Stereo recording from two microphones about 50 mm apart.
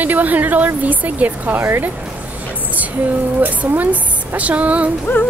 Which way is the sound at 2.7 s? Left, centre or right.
Right.